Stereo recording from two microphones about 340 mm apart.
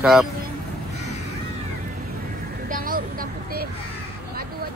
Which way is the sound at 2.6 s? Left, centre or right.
Right.